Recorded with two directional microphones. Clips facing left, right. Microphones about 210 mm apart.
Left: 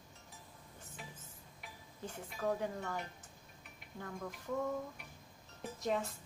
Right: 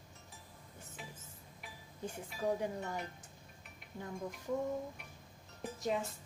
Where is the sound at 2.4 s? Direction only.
15° right (ahead or behind).